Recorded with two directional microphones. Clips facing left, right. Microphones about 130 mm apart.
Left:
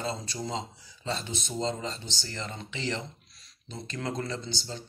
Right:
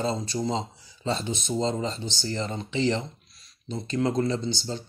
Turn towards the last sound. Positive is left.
turn(degrees=-25)  # may be behind; listen again after turning